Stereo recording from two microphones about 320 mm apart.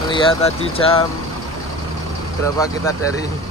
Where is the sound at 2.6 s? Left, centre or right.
Centre.